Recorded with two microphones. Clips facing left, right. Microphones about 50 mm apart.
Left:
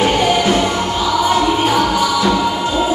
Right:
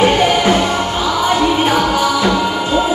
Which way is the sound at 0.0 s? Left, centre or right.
Right.